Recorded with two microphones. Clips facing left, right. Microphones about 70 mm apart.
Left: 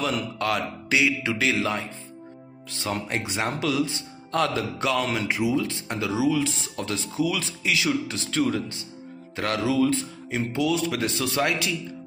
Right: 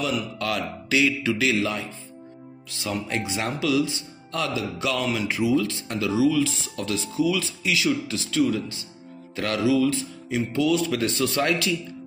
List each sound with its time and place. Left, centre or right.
0.0 s speech: left
5.3 s speech: left
9.3 s mantra: left
10.5 s speech: left